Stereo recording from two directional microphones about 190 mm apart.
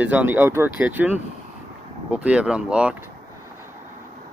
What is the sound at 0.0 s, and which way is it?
Speech, 10° right (ahead or behind).